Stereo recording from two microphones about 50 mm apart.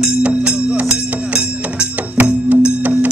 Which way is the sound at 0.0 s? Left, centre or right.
Centre.